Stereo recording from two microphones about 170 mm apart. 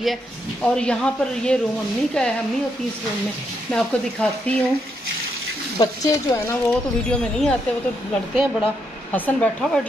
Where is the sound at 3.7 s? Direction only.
5° left (ahead or behind).